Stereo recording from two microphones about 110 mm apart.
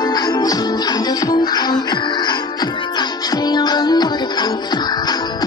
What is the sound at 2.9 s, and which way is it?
Music, 40° left (ahead or behind).